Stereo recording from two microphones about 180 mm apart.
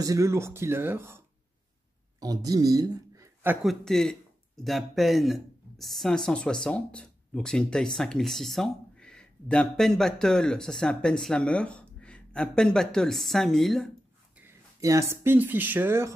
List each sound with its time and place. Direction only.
0.0 s speech: 15° right (ahead or behind)
3.6 s a man's voice: 5° left (ahead or behind)
14.4 s speech: 15° right (ahead or behind)